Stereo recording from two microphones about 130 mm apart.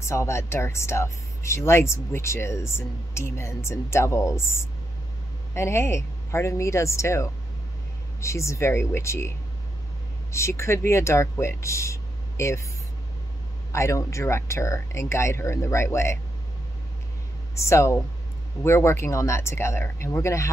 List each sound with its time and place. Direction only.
0.0 s speech: 20° left (ahead or behind)
10.3 s speech: 20° left (ahead or behind)
13.7 s speech: 20° left (ahead or behind)
17.6 s speech: 20° left (ahead or behind)